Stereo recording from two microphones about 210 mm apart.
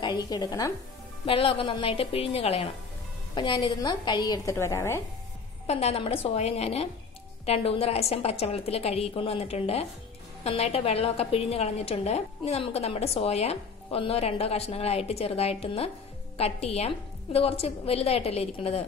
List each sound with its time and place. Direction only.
0.0 s a woman's voice: 20° left (ahead or behind)
5.7 s a woman's voice: 30° left (ahead or behind)